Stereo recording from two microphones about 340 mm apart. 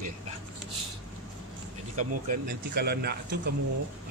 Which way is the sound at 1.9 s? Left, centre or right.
Right.